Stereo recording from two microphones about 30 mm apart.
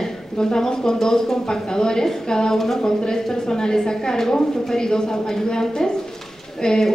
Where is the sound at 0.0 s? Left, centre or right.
Centre.